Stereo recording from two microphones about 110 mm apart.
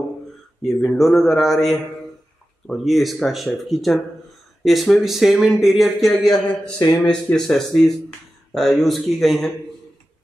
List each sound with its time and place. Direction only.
0.7 s speech: centre (ahead or behind)